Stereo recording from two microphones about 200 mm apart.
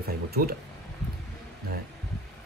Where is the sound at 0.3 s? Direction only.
50° right (ahead or behind).